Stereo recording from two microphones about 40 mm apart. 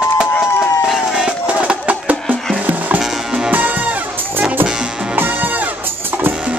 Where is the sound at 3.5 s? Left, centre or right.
Right.